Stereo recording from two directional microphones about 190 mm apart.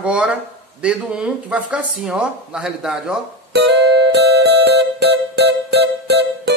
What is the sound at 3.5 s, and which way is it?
Music, 60° right (ahead or behind).